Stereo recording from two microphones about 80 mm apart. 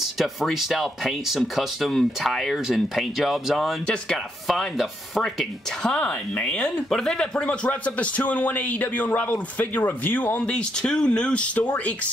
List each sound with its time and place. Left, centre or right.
0.0 s speech: centre
3.8 s speech: centre
4.5 s speech: centre
5.8 s speech: centre